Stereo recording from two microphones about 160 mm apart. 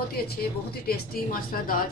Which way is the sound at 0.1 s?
70° left (ahead or behind).